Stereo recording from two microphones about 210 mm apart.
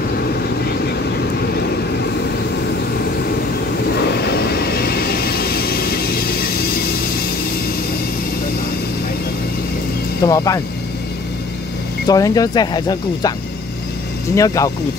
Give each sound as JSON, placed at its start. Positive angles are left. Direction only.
{"t": 3.9, "sound": "vehicle", "side_deg": 50}
{"t": 10.2, "sound": "speech", "side_deg": 15}
{"t": 12.1, "sound": "speech", "side_deg": 15}
{"t": 14.3, "sound": "speech", "side_deg": 15}